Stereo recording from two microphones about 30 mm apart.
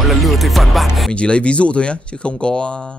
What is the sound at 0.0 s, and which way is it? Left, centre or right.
Music, centre.